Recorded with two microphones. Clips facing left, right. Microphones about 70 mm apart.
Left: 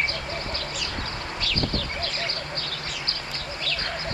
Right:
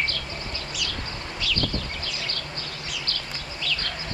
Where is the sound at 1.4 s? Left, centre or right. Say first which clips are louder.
Right 3 dB; left.